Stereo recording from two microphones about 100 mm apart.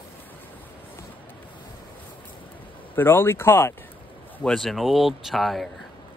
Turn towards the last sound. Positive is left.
turn(degrees=0)  # may be behind; listen again after turning